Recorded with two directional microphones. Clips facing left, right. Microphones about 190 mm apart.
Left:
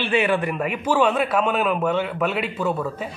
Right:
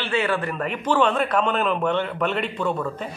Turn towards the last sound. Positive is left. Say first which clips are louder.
# left 1 dB
turn(degrees=5)  # may be behind; listen again after turning